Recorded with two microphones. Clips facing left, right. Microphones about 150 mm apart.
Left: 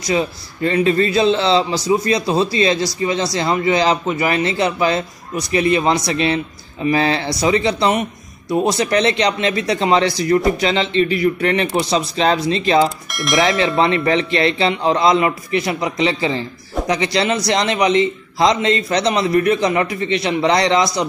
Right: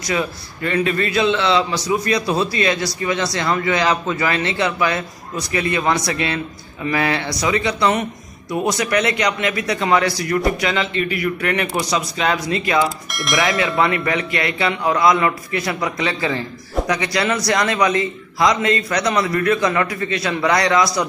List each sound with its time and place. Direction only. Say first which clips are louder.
0.1 s speech: left 3 dB; 25° left (ahead or behind)
13.1 s speech: left 3 dB; centre (ahead or behind)
13.4 s speech: left 3 dB; 25° left (ahead or behind)